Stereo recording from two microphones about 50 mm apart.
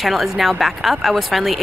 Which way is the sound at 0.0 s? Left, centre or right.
Centre.